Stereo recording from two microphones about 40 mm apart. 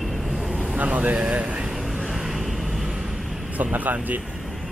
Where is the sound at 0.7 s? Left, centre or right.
Right.